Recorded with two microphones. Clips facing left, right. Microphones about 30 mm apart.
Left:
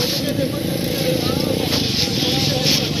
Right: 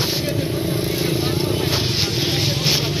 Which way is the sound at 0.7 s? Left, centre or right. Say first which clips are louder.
Left 1 dB; centre.